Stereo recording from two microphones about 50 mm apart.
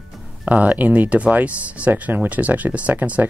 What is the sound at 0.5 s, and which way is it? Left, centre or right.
Speech, right.